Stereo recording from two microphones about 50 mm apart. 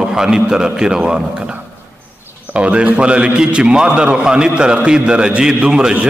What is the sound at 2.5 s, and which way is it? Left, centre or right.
A man's voice, right.